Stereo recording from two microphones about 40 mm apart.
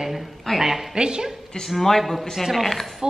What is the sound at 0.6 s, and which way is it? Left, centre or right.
Speech, centre.